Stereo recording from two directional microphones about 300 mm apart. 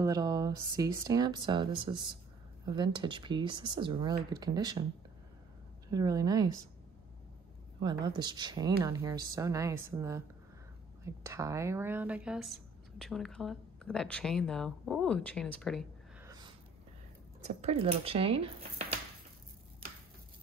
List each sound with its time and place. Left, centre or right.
0.0 s speech: centre
5.9 s speech: centre
7.8 s speech: centre
11.2 s speech: centre
16.3 s a sound: centre
17.5 s speech: right